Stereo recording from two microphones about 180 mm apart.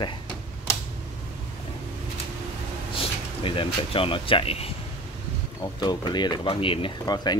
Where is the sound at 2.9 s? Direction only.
30° left (ahead or behind).